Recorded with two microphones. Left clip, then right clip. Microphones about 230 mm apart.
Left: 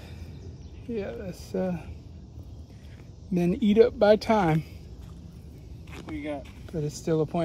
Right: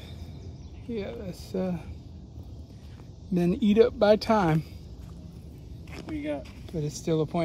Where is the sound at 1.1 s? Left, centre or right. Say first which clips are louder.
Left 1 dB; left.